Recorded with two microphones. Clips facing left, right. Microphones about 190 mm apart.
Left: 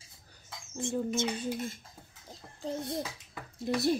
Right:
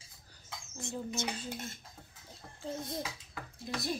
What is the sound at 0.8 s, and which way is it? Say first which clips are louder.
Speech: left 7 dB; 25° left (ahead or behind).